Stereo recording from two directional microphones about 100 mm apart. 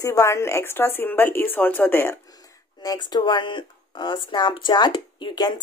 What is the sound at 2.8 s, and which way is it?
Speech, 40° left (ahead or behind).